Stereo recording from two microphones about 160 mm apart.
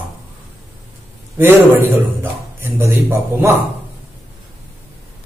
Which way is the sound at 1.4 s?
15° right (ahead or behind).